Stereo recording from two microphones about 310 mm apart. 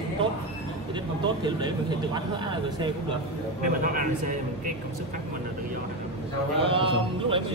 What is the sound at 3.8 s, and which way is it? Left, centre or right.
Speech, right.